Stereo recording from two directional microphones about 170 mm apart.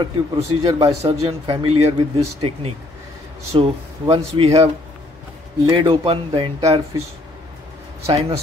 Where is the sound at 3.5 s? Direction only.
35° right (ahead or behind).